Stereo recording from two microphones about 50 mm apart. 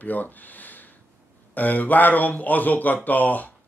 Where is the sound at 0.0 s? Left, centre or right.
Left.